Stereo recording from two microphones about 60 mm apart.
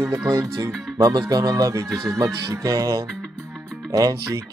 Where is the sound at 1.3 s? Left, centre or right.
Right.